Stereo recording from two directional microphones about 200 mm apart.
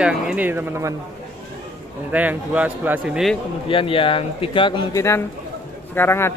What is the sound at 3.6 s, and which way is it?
Speech, 25° left (ahead or behind).